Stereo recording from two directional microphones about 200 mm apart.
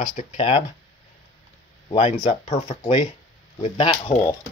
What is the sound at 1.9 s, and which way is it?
Speech, 30° left (ahead or behind).